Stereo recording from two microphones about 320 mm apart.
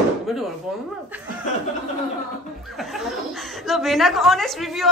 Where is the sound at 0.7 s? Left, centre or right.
Centre.